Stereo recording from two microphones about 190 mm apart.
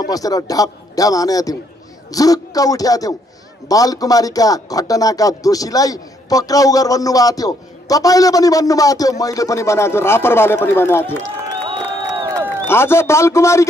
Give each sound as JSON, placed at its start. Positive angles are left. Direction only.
{"t": 0.1, "sound": "speech", "side_deg": 20}
{"t": 12.1, "sound": "crowd", "side_deg": -20}
{"t": 12.6, "sound": "speech", "side_deg": 15}